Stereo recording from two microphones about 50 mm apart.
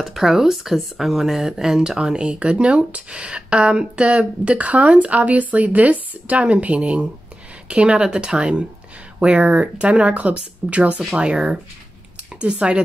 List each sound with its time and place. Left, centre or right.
0.0 s speech: centre